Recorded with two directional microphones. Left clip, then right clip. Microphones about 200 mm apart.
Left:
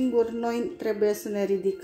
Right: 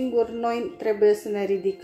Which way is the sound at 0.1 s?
35° left (ahead or behind).